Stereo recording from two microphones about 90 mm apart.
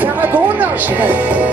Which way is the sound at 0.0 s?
20° right (ahead or behind).